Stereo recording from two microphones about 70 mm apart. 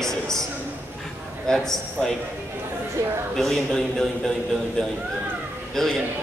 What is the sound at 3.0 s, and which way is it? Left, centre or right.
Speech, right.